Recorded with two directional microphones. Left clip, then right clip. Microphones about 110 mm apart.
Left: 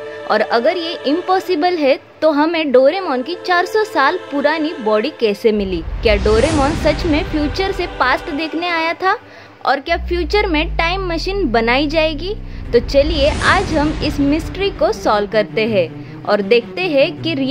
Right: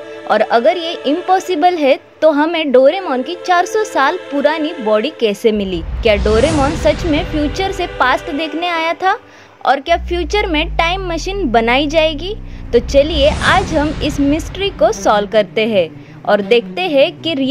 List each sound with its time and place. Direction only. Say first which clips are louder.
0.3 s a woman's voice: right 3 dB; 40° right (ahead or behind)